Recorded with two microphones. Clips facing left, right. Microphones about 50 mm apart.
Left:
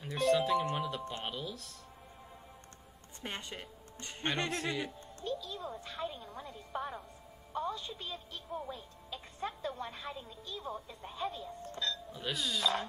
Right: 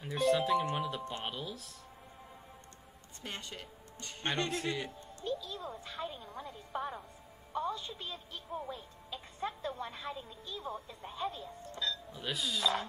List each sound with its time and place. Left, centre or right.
0.0 s speech: centre
3.2 s speech: left
4.5 s speech: centre